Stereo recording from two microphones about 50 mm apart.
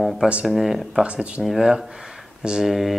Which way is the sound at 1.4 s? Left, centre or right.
Centre.